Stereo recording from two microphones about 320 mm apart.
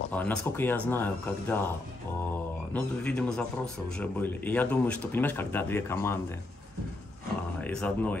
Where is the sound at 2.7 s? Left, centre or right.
Centre.